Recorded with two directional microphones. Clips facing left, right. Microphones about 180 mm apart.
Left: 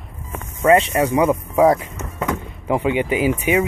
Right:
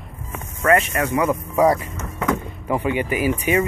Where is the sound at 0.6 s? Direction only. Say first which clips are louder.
Left 4 dB; 25° left (ahead or behind).